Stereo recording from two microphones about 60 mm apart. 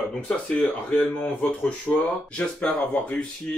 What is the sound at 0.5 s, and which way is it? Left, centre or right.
Speech, left.